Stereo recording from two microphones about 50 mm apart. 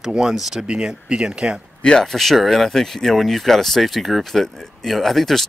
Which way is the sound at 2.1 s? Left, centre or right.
Centre.